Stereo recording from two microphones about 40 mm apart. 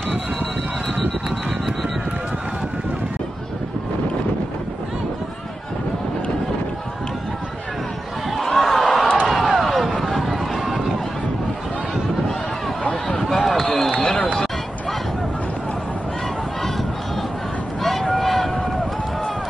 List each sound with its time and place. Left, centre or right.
8.5 s a sound: centre
8.8 s a sound: left
9.3 s crowd: centre
9.9 s run: centre
13.2 s run: centre
18.1 s run: centre